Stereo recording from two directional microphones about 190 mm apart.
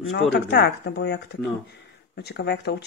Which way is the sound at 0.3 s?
60° left (ahead or behind).